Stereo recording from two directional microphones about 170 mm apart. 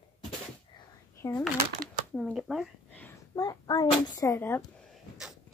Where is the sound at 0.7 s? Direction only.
25° left (ahead or behind).